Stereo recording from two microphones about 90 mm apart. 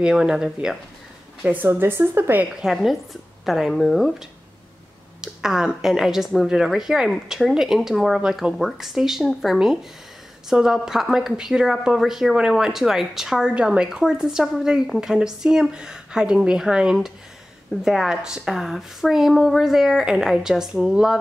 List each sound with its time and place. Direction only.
0.0 s a woman's voice: 10° right (ahead or behind)
1.4 s a woman's voice: 20° right (ahead or behind)
2.5 s speech: 5° right (ahead or behind)
5.2 s a woman's voice: 5° right (ahead or behind)